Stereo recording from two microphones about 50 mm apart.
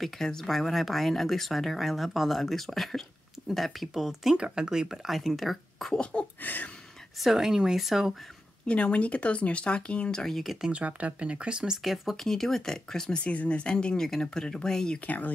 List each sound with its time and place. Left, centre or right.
0.0 s speech: centre
4.4 s speech: centre
5.9 s speech: centre
6.4 s speech: left
7.2 s speech: centre
8.6 s speech: left
10.2 s speech: centre
10.7 s speech: right
11.8 s speech: centre
13.2 s speech: left
15.0 s speech: left